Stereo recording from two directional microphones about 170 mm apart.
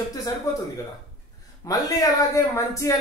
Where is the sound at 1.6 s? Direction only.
20° left (ahead or behind).